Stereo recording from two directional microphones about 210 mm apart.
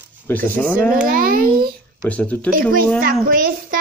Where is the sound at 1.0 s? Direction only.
40° right (ahead or behind).